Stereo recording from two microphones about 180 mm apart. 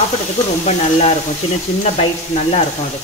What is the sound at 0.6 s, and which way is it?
Speech, 35° left (ahead or behind).